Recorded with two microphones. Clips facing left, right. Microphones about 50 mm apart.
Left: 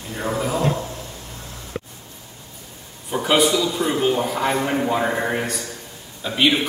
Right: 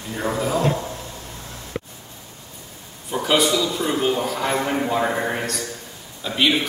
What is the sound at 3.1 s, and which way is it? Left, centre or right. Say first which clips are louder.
A man's voice: left 1 dB; centre.